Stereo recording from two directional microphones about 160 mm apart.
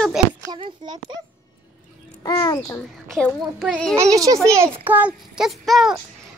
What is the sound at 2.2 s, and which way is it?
Speech, 20° left (ahead or behind).